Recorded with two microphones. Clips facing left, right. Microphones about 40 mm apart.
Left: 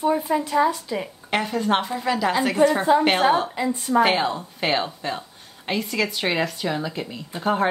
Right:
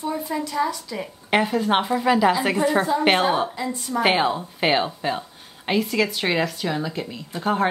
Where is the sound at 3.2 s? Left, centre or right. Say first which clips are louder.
Left 2 dB; centre.